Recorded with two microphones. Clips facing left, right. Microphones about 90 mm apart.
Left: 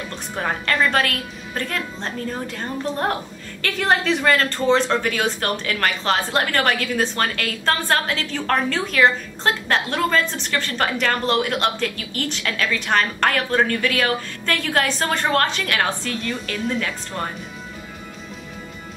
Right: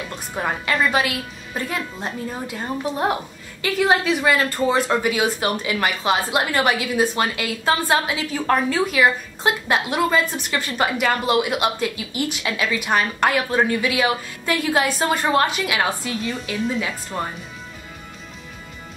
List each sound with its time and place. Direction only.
0.4 s speech: 10° right (ahead or behind)